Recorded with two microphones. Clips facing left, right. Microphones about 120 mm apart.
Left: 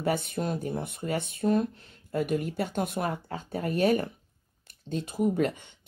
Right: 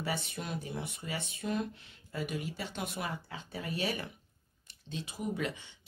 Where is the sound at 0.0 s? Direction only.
50° left (ahead or behind).